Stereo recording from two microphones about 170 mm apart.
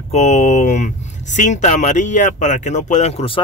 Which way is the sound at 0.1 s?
40° left (ahead or behind).